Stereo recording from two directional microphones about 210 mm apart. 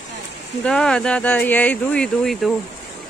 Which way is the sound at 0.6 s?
5° left (ahead or behind).